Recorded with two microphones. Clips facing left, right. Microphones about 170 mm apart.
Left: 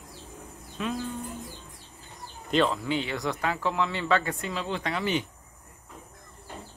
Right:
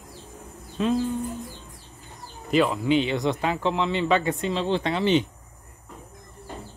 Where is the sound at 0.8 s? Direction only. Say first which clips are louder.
Right 8 dB; 30° right (ahead or behind).